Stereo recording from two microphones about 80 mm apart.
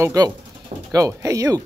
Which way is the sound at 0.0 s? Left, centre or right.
Right.